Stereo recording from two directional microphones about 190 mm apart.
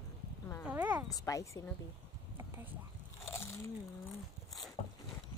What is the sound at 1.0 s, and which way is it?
Speech, 20° left (ahead or behind).